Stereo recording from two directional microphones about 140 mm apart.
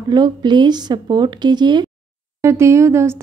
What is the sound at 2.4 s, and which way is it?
Speech, 20° right (ahead or behind).